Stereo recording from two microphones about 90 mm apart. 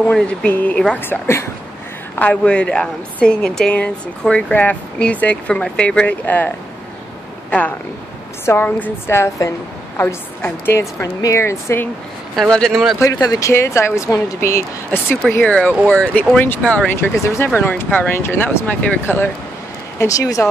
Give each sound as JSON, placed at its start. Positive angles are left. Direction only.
{"t": 0.0, "sound": "a woman's voice", "side_deg": 10}
{"t": 1.0, "sound": "speech", "side_deg": 25}
{"t": 2.1, "sound": "a woman's voice", "side_deg": 15}
{"t": 8.5, "sound": "a woman's voice", "side_deg": 20}
{"t": 12.4, "sound": "speech", "side_deg": 5}
{"t": 13.1, "sound": "speech", "side_deg": 45}
{"t": 13.5, "sound": "a woman's voice", "side_deg": 30}
{"t": 14.9, "sound": "a woman's voice", "side_deg": 20}
{"t": 17.2, "sound": "a woman's voice", "side_deg": 30}
{"t": 20.0, "sound": "a woman's voice", "side_deg": 40}